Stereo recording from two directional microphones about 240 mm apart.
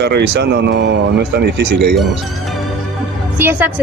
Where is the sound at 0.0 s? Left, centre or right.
Right.